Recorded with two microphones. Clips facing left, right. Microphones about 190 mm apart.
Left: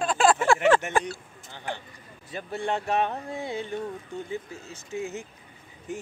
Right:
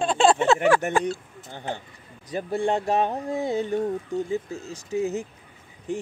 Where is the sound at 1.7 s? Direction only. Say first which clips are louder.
Right 3 dB; 25° right (ahead or behind).